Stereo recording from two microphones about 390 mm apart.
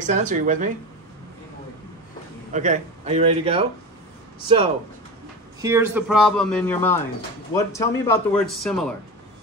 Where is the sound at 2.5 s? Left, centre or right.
Centre.